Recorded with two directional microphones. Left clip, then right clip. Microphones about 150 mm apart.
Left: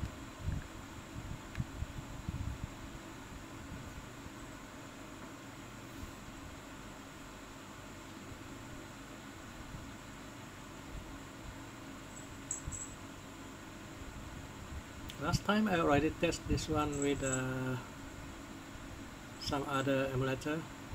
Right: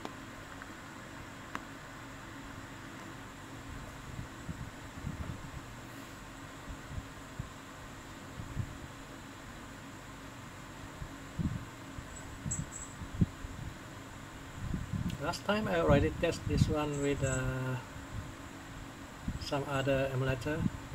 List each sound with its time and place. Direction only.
15.2 s speech: 20° left (ahead or behind)
19.5 s speech: 25° left (ahead or behind)